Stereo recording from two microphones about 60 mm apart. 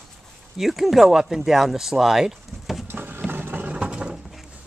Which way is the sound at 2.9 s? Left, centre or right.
Right.